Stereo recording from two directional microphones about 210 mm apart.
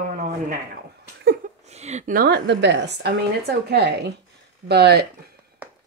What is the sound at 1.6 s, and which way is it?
Speech, 30° right (ahead or behind).